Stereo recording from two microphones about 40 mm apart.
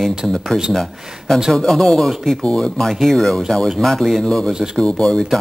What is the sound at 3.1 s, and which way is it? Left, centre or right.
Speech, centre.